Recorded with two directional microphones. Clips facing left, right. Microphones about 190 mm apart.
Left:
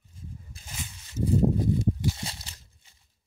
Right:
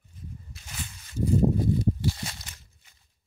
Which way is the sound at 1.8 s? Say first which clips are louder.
Right 1 dB; 25° left (ahead or behind).